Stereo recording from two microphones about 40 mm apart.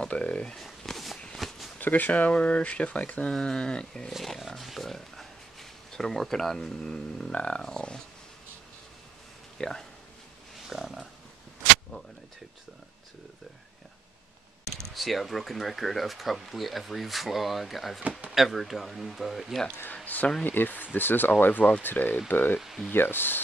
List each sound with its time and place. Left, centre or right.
0.0 s speech: left
0.7 s walk: centre
1.8 s speech: left
3.3 s speech: centre
4.2 s speech: centre
9.6 s speech: centre
10.7 s pig: centre
15.0 s speech: centre
20.1 s speech: left
22.6 s speech: centre
22.9 s speech: left